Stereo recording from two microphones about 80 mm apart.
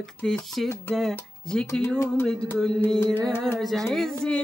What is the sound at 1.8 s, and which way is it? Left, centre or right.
Speech, left.